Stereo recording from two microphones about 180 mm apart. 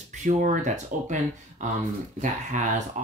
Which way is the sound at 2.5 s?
40° right (ahead or behind).